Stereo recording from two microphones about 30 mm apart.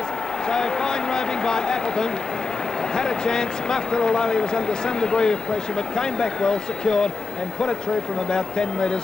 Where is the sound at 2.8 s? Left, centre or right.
Left.